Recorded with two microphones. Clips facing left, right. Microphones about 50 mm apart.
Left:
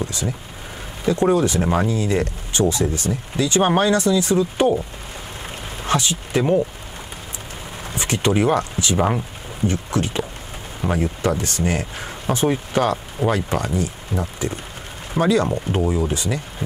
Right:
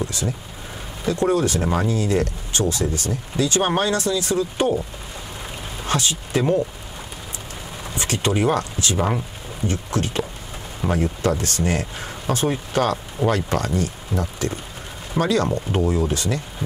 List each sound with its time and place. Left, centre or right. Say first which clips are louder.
1.0 s speech: left 2 dB; left
5.9 s speech: left 2 dB; left
7.9 s speech: left 3 dB; left
15.7 s speech: even; centre
16.1 s speech: even; left